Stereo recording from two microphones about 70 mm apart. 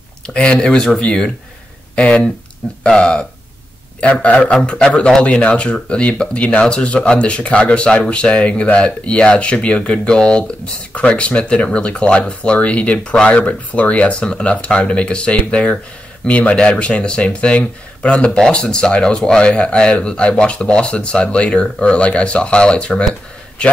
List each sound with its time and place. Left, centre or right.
0.3 s a man's voice: centre